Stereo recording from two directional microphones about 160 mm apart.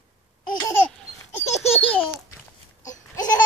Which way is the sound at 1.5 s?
40° left (ahead or behind).